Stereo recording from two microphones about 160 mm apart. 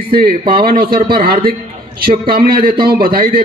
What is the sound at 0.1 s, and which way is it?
A man's voice, 70° right (ahead or behind).